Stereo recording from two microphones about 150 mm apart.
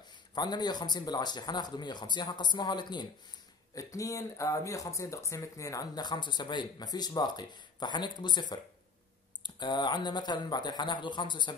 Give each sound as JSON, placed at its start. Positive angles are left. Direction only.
{"t": 0.3, "sound": "speech", "side_deg": 30}